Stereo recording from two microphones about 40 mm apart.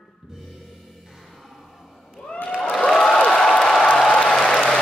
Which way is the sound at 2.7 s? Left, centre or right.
Centre.